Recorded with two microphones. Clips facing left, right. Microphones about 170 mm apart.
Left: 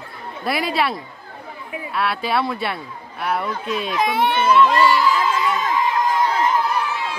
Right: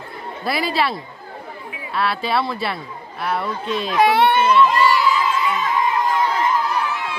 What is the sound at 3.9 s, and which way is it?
Speech, 70° right (ahead or behind).